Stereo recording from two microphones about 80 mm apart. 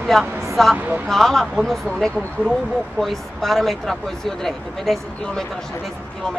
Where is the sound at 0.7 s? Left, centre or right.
Right.